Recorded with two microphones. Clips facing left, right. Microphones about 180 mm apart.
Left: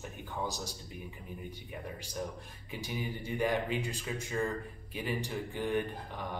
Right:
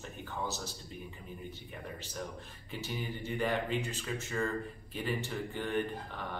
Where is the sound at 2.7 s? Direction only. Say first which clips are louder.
Left 1 dB; 15° left (ahead or behind).